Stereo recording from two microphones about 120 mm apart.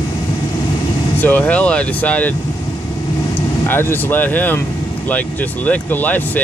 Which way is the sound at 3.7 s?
15° left (ahead or behind).